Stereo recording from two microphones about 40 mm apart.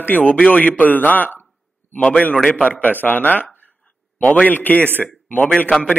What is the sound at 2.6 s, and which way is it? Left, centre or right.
Speech, left.